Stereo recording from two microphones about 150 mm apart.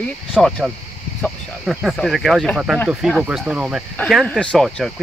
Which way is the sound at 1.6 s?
5° right (ahead or behind).